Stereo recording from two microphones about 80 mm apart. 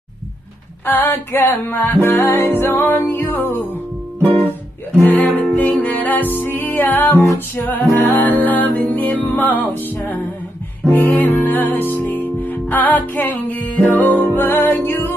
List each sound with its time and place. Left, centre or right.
0.8 s music: left
4.9 s music: left